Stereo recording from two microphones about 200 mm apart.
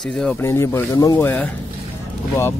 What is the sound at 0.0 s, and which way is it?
Speech, 5° left (ahead or behind).